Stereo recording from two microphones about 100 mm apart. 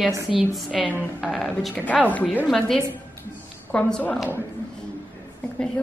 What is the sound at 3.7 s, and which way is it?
Speech, 15° left (ahead or behind).